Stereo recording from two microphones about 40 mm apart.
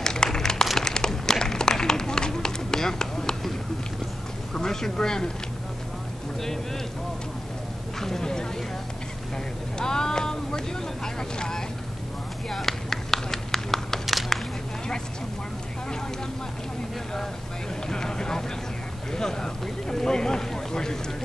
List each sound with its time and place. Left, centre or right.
0.0 s a sound: centre
0.7 s run: centre
4.6 s speech: centre
8.0 s speech: centre
9.8 s speech: centre
12.4 s a sound: centre
17.8 s speech: centre